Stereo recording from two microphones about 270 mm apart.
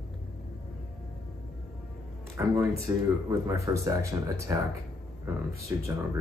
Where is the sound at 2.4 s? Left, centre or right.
Centre.